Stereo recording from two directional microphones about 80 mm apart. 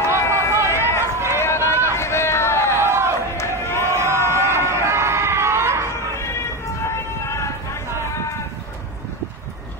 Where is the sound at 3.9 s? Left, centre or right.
Right.